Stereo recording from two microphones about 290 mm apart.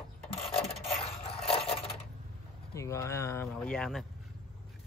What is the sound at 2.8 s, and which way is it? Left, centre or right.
Speech, centre.